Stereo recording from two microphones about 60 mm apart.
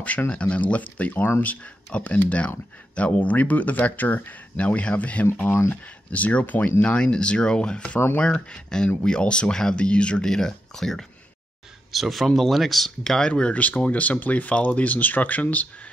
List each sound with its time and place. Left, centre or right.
0.3 s speech: centre
5.5 s speech: left
6.1 s speech: left; by 13.3 s centre
13.3 s speech: left